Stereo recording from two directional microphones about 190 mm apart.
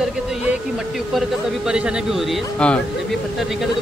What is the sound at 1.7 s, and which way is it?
Speech, 5° right (ahead or behind).